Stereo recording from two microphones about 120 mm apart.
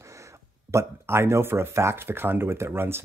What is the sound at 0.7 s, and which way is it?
Speech, 25° right (ahead or behind).